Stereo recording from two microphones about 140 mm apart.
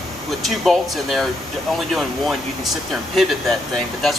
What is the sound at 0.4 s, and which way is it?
Speech, centre (ahead or behind).